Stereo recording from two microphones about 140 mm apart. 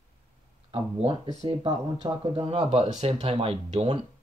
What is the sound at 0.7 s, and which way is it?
Speech, 40° right (ahead or behind).